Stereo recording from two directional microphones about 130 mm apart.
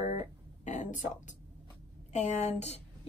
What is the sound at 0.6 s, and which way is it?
Speech, 70° left (ahead or behind).